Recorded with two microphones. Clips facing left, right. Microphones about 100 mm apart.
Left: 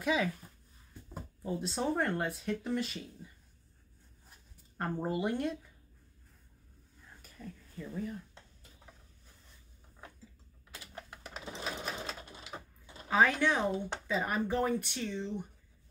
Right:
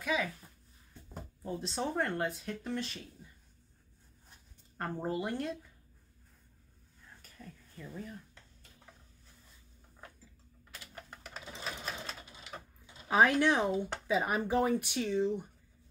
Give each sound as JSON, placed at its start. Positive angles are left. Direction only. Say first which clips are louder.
{"t": 0.0, "sound": "speech", "louder": "left 2 dB", "side_deg": 20}
{"t": 1.4, "sound": "speech", "louder": "left 2 dB", "side_deg": 5}
{"t": 4.3, "sound": "writing", "louder": "even", "side_deg": 5}
{"t": 7.2, "sound": "a sound", "louder": "left 5 dB", "side_deg": 5}
{"t": 11.1, "sound": "sewing machine", "louder": "left 3 dB", "side_deg": 5}
{"t": 13.1, "sound": "speech", "louder": "right 2 dB", "side_deg": -15}